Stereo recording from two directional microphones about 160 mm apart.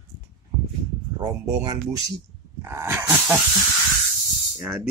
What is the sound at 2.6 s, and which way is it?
Dog, 15° right (ahead or behind).